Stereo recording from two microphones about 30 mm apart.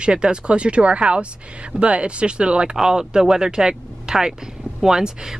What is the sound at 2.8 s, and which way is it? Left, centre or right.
Speech, right.